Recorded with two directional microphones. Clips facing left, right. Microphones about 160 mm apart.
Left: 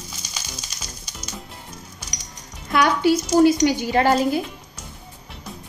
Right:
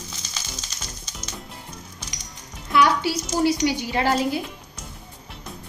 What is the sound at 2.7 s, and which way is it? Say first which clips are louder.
Music: left 2 dB; 50° left (ahead or behind).